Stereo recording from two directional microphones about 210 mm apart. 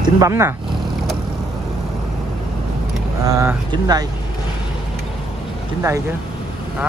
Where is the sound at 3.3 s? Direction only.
15° right (ahead or behind).